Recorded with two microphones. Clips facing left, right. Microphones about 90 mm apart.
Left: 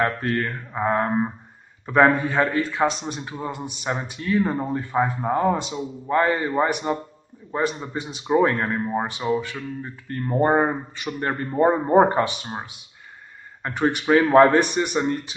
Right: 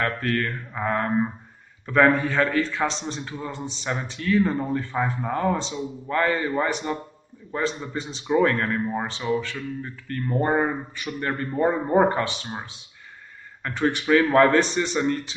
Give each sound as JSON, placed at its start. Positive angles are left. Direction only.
{"t": 0.0, "sound": "a man's voice", "side_deg": 25}